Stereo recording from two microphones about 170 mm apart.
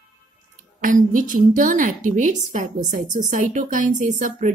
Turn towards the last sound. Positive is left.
turn(degrees=-45)  # may be behind; listen again after turning